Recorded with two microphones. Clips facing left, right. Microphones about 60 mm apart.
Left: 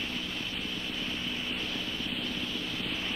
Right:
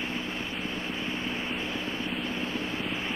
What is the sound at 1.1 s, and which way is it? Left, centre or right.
Vehicle, right.